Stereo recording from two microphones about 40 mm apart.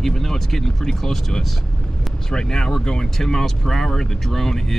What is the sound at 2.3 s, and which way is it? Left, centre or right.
Speech, centre.